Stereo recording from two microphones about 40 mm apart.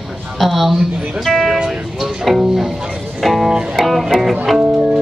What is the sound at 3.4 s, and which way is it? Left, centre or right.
Music, centre.